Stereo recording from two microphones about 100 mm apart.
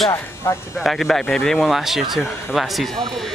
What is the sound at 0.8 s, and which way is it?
Speech, 5° left (ahead or behind).